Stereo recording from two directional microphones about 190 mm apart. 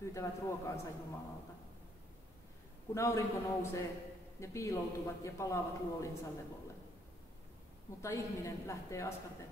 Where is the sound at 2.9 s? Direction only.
15° left (ahead or behind).